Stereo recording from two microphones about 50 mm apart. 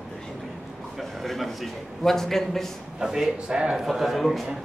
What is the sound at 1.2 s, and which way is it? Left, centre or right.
A man's voice, centre.